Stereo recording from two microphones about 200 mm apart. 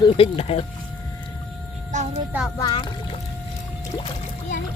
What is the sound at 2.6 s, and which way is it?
Speech, 20° left (ahead or behind).